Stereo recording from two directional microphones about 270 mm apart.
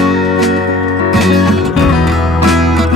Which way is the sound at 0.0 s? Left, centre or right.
Centre.